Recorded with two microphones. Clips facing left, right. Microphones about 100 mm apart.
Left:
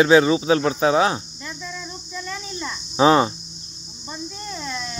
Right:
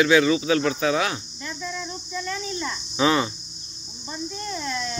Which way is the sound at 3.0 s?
35° left (ahead or behind).